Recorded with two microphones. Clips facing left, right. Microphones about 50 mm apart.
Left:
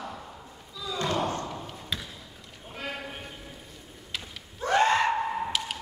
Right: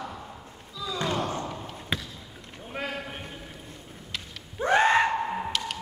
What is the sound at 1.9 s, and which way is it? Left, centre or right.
Basketball bounce, right.